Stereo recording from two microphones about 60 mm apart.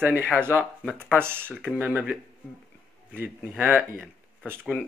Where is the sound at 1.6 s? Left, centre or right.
Right.